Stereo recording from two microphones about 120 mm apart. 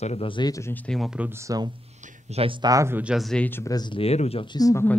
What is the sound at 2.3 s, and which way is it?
Speech, 65° right (ahead or behind).